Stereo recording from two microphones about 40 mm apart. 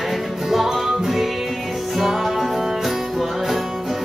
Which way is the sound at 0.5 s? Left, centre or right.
Centre.